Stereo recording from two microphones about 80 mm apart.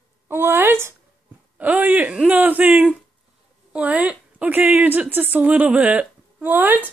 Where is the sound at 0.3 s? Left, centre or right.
Right.